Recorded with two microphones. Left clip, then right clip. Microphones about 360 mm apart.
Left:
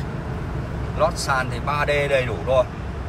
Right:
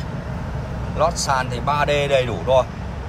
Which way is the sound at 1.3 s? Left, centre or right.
Centre.